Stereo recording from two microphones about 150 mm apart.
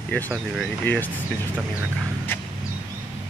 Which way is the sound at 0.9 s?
15° left (ahead or behind).